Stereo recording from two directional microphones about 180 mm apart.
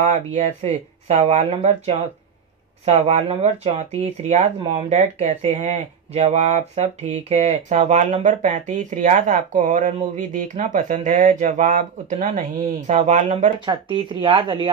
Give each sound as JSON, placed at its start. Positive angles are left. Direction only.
{"t": 0.1, "sound": "speech", "side_deg": -40}
{"t": 13.7, "sound": "speech", "side_deg": -30}